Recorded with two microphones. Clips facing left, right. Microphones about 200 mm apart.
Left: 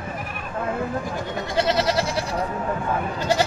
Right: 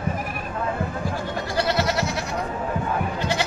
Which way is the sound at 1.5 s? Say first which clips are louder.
Left 2 dB; 25° left (ahead or behind).